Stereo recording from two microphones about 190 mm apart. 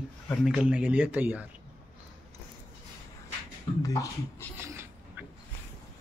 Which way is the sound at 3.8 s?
15° left (ahead or behind).